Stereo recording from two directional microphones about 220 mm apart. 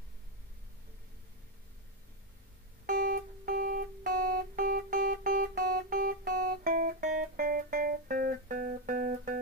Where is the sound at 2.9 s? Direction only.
40° right (ahead or behind).